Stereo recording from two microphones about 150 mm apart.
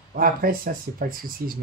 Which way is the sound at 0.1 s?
75° right (ahead or behind).